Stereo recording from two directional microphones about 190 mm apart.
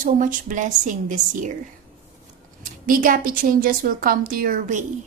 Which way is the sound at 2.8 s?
45° right (ahead or behind).